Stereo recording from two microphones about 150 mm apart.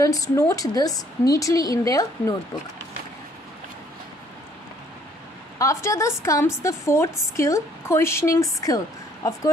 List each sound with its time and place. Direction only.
0.0 s a woman's voice: 25° left (ahead or behind)
5.6 s a woman's voice: 20° left (ahead or behind)